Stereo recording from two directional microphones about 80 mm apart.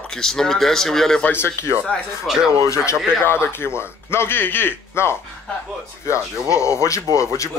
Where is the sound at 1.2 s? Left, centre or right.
Left.